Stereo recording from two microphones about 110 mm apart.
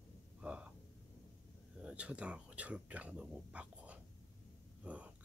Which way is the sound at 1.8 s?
10° right (ahead or behind).